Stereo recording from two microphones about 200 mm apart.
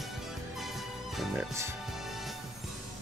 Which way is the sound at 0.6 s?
Centre (ahead or behind).